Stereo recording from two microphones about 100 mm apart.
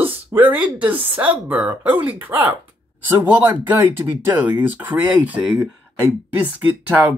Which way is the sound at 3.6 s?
20° right (ahead or behind).